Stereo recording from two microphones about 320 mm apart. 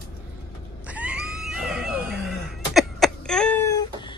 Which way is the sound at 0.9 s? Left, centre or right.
Centre.